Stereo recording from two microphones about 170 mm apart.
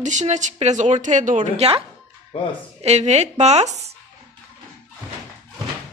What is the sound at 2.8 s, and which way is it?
A woman's voice, 40° right (ahead or behind).